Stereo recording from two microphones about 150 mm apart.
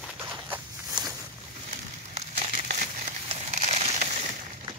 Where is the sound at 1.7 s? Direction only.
45° right (ahead or behind).